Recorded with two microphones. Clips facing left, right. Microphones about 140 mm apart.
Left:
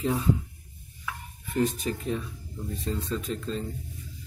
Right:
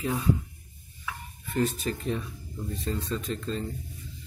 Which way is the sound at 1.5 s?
15° left (ahead or behind).